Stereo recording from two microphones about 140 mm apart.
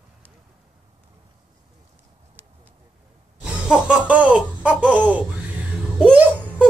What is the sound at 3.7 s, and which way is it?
Speech, 10° right (ahead or behind).